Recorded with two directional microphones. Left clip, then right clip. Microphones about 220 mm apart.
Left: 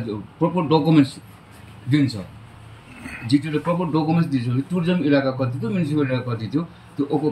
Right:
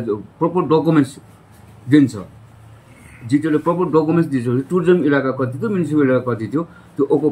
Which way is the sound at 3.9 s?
35° right (ahead or behind).